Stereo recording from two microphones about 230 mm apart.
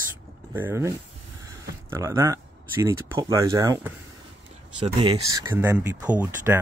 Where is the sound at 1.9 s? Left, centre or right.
Centre.